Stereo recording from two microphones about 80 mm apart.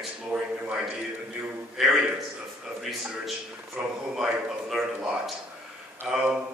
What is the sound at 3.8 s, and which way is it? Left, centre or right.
A man's voice, centre.